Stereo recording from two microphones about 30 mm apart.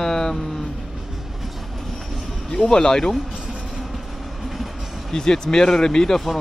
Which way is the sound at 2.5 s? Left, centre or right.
Centre.